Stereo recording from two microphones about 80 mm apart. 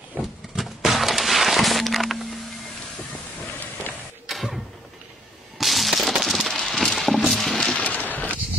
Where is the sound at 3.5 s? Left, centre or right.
Left.